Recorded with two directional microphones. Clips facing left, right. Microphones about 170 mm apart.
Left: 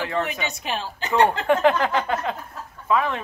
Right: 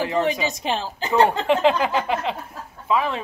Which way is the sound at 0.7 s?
30° right (ahead or behind).